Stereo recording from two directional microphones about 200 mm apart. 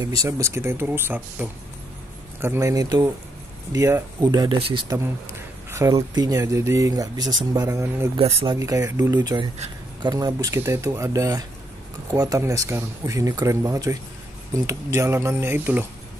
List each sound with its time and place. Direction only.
0.0 s speech: 15° right (ahead or behind)
8.2 s speech: 30° right (ahead or behind)
8.5 s speech: 15° right (ahead or behind)